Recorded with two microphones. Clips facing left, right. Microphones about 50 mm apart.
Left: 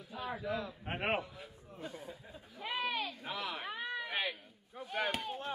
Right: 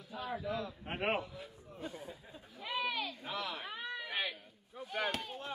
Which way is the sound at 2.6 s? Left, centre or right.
Left.